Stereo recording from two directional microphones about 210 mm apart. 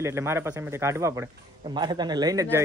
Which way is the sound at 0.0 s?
15° right (ahead or behind).